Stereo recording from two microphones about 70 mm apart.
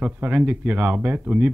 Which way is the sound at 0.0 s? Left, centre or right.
Centre.